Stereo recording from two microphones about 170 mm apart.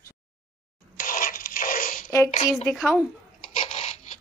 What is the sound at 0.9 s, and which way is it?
Zipper, 55° left (ahead or behind).